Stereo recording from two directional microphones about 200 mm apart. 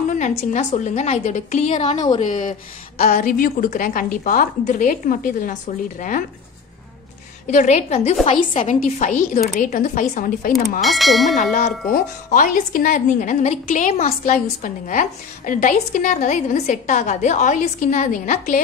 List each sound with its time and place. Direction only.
0.1 s a woman's voice: 40° left (ahead or behind)
7.4 s a woman's voice: 35° left (ahead or behind)
10.8 s speech: centre (ahead or behind)
11.9 s a woman's voice: 40° left (ahead or behind)